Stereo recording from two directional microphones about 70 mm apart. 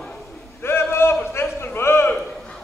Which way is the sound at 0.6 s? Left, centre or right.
Left.